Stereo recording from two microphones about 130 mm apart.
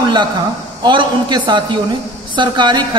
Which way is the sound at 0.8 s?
35° right (ahead or behind).